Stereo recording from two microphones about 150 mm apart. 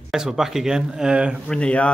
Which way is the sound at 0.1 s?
5° right (ahead or behind).